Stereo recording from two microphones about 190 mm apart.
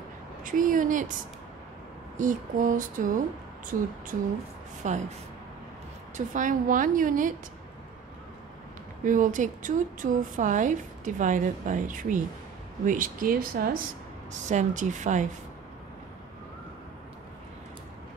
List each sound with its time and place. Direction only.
0.4 s a woman's voice: 45° right (ahead or behind)
2.1 s a woman's voice: 45° right (ahead or behind)
6.1 s a woman's voice: 45° right (ahead or behind)
9.0 s a woman's voice: 45° right (ahead or behind)
14.3 s a woman's voice: 40° right (ahead or behind)